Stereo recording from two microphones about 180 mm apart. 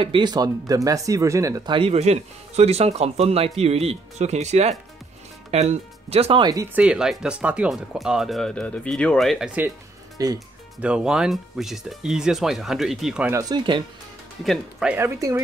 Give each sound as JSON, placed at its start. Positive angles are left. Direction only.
{"t": 0.0, "sound": "speech", "side_deg": -25}
{"t": 1.8, "sound": "speech", "side_deg": -35}
{"t": 6.8, "sound": "speech", "side_deg": -5}
{"t": 10.1, "sound": "speech", "side_deg": -20}
{"t": 10.8, "sound": "speech", "side_deg": -5}
{"t": 13.3, "sound": "speech", "side_deg": -20}
{"t": 14.4, "sound": "speech", "side_deg": 0}
{"t": 15.0, "sound": "speech", "side_deg": -15}